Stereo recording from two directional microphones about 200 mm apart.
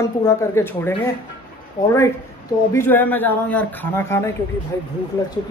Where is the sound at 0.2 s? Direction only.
15° left (ahead or behind).